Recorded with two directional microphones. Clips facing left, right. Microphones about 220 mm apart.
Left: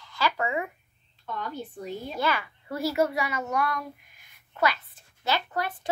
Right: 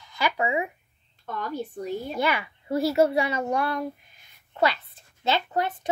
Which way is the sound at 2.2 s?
20° right (ahead or behind).